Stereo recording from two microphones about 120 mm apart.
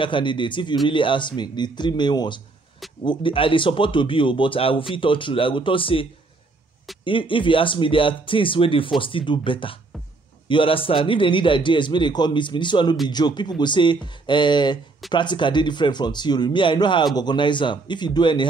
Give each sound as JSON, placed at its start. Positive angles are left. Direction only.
{"t": 0.0, "sound": "speech", "side_deg": 45}
{"t": 7.1, "sound": "speech", "side_deg": 45}